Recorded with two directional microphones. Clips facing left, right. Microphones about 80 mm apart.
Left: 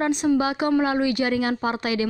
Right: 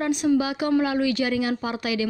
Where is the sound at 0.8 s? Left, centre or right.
Left.